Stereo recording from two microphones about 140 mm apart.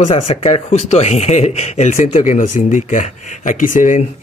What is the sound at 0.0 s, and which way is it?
Speech, 45° left (ahead or behind).